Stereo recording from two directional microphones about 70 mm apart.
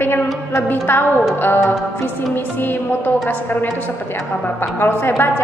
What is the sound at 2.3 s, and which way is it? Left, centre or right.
Speech, left.